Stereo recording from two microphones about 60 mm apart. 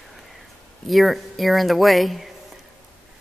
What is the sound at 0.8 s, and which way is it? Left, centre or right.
Speech, centre.